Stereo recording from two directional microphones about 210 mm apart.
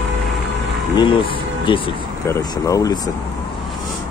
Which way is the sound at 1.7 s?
20° left (ahead or behind).